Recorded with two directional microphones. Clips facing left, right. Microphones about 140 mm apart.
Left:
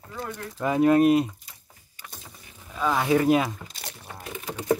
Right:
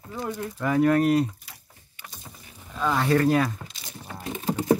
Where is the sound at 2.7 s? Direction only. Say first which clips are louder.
Even; 5° left (ahead or behind).